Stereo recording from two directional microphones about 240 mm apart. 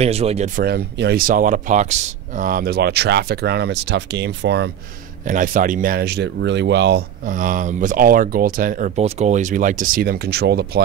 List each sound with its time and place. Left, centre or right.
0.0 s speech: right
5.2 s speech: right